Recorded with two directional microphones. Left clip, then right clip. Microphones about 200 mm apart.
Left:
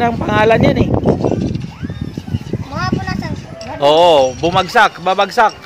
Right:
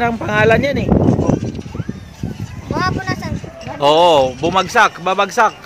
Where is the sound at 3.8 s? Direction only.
5° right (ahead or behind).